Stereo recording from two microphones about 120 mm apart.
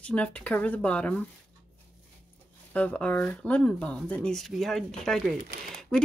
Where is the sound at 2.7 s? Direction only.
10° left (ahead or behind).